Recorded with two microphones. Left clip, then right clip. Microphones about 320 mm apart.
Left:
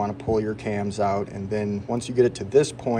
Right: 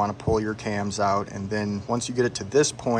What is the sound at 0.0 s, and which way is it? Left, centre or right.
Speech, centre.